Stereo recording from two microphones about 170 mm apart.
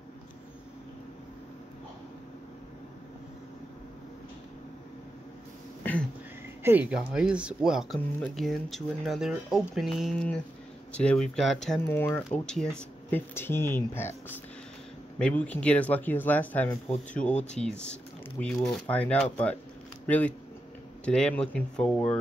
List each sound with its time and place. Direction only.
6.6 s speech: 10° right (ahead or behind); by 14.1 s 15° left (ahead or behind)
15.1 s speech: 5° left (ahead or behind)
17.4 s speech: 40° left (ahead or behind)
17.6 s speech: 5° left (ahead or behind)